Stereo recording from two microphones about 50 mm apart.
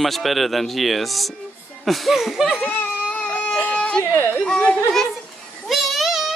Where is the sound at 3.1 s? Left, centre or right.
Left.